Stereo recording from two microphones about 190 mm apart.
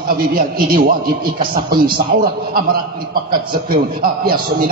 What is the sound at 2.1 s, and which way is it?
A man's voice, 50° right (ahead or behind).